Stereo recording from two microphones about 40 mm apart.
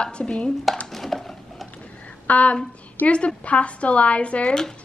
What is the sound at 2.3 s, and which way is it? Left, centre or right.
Speech, left.